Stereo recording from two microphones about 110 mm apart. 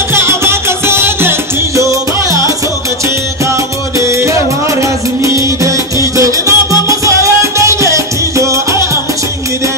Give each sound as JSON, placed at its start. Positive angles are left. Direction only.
{"t": 0.1, "sound": "music", "side_deg": -25}
{"t": 4.0, "sound": "music", "side_deg": -25}